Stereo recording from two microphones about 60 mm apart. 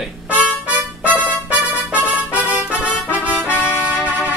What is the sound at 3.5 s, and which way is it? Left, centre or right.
Music, left.